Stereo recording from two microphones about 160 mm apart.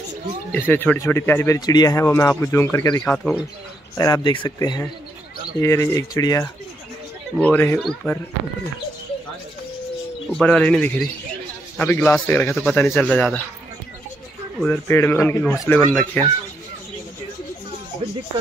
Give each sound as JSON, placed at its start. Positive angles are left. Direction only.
{"t": 0.5, "sound": "speech", "side_deg": 10}
{"t": 1.7, "sound": "speech", "side_deg": 25}
{"t": 3.9, "sound": "speech", "side_deg": 25}
{"t": 10.3, "sound": "speech", "side_deg": 5}
{"t": 14.6, "sound": "speech", "side_deg": 10}